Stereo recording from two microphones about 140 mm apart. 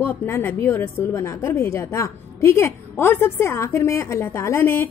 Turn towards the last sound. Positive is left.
turn(degrees=15)  # may be behind; listen again after turning